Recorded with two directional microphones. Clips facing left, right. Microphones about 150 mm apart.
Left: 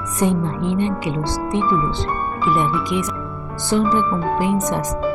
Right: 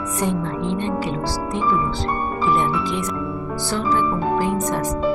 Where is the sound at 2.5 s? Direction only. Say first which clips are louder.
Left 2 dB; 15° left (ahead or behind).